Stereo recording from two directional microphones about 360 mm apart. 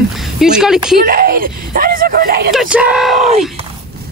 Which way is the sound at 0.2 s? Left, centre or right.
Centre.